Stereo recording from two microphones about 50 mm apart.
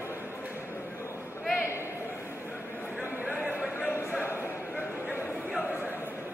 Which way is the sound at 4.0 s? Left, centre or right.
Left.